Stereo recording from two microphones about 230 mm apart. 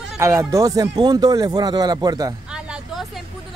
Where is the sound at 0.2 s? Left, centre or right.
Centre.